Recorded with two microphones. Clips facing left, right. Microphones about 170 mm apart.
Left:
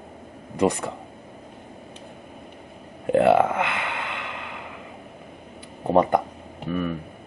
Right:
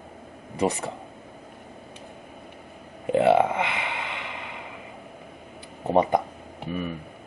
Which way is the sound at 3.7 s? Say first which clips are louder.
Left 2 dB; centre (ahead or behind).